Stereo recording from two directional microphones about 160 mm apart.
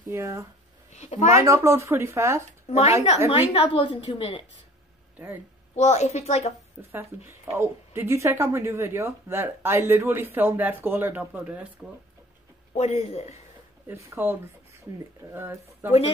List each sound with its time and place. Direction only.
0.1 s speech: 15° right (ahead or behind)
0.9 s a woman's voice: 45° left (ahead or behind)
1.3 s speech: 20° right (ahead or behind)
3.3 s a woman's voice: 30° left (ahead or behind)
5.8 s a woman's voice: 45° left (ahead or behind)
6.9 s speech: 15° right (ahead or behind)
12.7 s a woman's voice: 45° left (ahead or behind)
14.1 s speech: 10° right (ahead or behind)